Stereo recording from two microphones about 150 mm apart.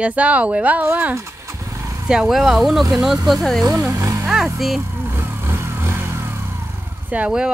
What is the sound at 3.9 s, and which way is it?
Music, 20° right (ahead or behind).